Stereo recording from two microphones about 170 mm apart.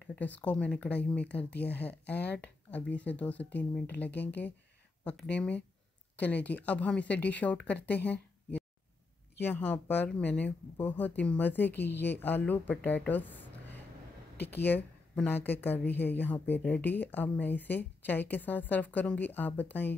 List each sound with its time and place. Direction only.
0.0 s speech: 10° left (ahead or behind)
5.3 s speech: 10° left (ahead or behind)
11.9 s a woman's voice: 85° left
12.2 s a woman's voice: 10° left (ahead or behind)